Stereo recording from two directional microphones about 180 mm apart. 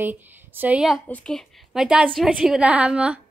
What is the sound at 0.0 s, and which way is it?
A woman's voice, 10° right (ahead or behind).